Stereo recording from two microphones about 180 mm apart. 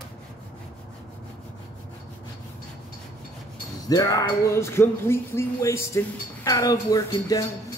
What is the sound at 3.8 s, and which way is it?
Speech, 20° left (ahead or behind).